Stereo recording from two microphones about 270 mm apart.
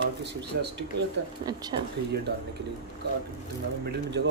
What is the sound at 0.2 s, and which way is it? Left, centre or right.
Speech, right.